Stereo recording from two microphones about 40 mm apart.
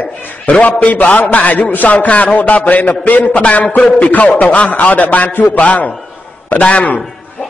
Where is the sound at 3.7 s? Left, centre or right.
Left.